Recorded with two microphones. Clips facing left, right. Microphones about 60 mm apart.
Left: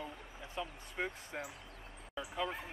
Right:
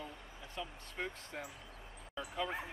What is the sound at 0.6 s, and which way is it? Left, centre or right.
Speech, centre.